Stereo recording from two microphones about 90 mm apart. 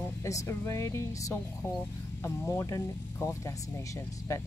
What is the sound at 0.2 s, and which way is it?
Speech, 35° left (ahead or behind).